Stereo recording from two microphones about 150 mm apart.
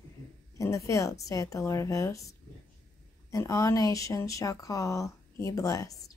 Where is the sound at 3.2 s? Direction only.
20° left (ahead or behind).